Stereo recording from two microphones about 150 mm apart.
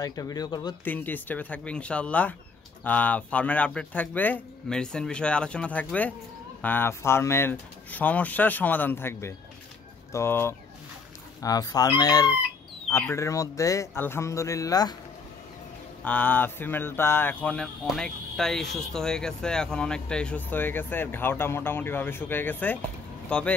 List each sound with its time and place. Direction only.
0.0 s speech: 25° left (ahead or behind)
0.8 s speech: 10° left (ahead or behind)
16.0 s speech: 10° left (ahead or behind)